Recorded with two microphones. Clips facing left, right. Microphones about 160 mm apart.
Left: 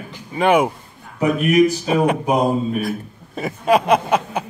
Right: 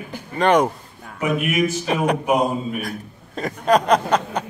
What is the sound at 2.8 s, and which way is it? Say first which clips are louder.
A man's voice: left 5 dB; 5° left (ahead or behind).